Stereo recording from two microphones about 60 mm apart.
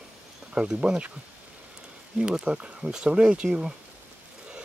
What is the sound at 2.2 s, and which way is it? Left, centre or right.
Speech, centre.